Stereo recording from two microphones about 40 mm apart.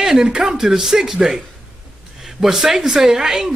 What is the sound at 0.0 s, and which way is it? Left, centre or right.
A man's voice, centre.